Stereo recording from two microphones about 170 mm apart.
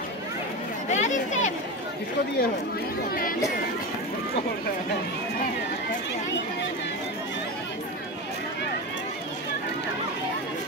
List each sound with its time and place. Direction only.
0.8 s chatter: 45° left (ahead or behind)